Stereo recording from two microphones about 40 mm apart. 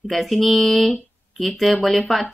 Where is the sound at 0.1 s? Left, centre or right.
Centre.